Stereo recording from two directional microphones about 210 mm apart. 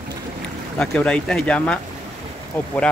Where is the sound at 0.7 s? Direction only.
5° left (ahead or behind).